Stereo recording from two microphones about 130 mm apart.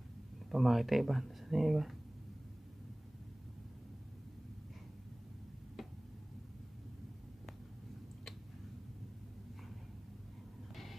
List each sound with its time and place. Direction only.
0.5 s speech: centre (ahead or behind)
10.7 s vehicle: centre (ahead or behind)